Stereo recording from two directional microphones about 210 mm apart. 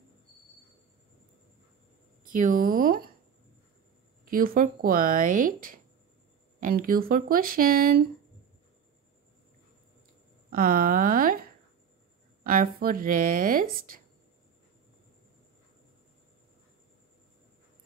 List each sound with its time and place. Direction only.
2.3 s speech: 40° right (ahead or behind)
4.3 s speech: 40° right (ahead or behind)
10.5 s speech: 45° right (ahead or behind)
12.4 s speech: 45° right (ahead or behind)